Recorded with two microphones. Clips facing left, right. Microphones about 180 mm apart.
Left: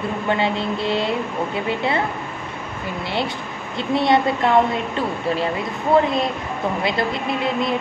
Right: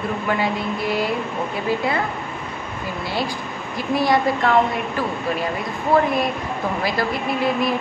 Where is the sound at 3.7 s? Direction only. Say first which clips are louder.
Left 1 dB; 25° left (ahead or behind).